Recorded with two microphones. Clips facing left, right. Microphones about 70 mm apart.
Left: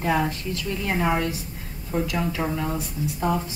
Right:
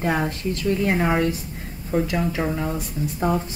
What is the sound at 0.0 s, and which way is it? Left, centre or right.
A woman's voice, right.